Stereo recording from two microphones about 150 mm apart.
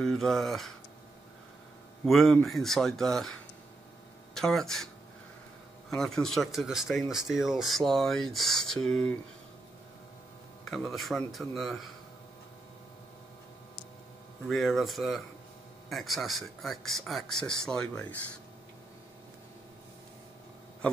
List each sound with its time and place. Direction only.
0.0 s speech: 5° left (ahead or behind)
2.0 s speech: centre (ahead or behind)
4.3 s speech: 5° left (ahead or behind)
5.9 s speech: 5° left (ahead or behind)
10.7 s speech: centre (ahead or behind)
14.5 s speech: centre (ahead or behind)